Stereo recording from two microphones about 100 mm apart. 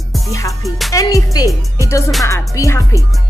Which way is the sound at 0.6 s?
Centre (ahead or behind).